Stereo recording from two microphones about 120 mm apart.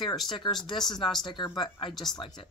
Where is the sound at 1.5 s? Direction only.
40° left (ahead or behind).